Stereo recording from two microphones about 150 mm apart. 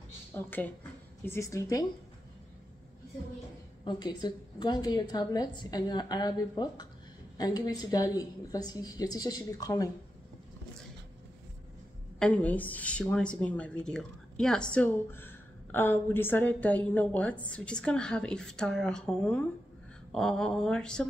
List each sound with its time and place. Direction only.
0.3 s a woman's voice: 15° left (ahead or behind)
3.8 s a woman's voice: 30° left (ahead or behind)
12.2 s a woman's voice: 10° left (ahead or behind)